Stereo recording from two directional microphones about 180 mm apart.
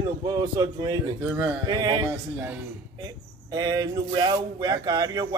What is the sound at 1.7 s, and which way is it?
Speech, 20° right (ahead or behind).